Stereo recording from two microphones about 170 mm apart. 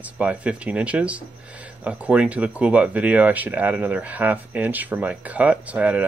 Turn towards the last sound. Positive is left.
turn(degrees=-10)  # may be behind; listen again after turning